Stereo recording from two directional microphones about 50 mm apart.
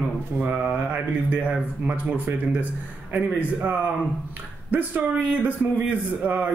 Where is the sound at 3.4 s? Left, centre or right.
Right.